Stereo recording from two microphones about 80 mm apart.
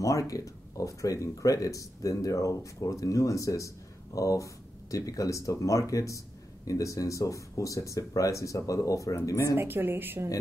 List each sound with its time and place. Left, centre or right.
0.0 s speech: left
9.6 s a woman's voice: right